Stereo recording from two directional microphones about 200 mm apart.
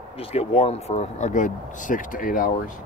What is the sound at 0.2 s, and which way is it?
Speech, 30° left (ahead or behind).